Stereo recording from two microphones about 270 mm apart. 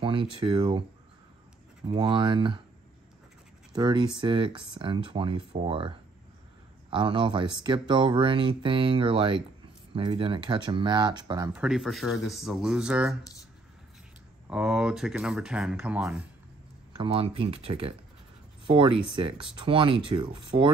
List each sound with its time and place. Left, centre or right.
0.0 s speech: centre
1.9 s speech: centre
3.7 s speech: centre
14.5 s speech: centre
16.9 s speech: centre